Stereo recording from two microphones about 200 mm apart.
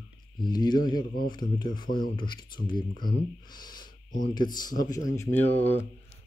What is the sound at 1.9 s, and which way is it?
Speech, 45° left (ahead or behind).